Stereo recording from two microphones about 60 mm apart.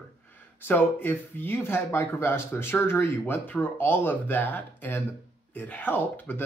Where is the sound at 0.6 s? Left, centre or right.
Left.